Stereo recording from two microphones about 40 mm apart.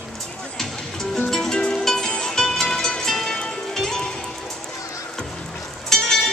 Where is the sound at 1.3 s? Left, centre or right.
Centre.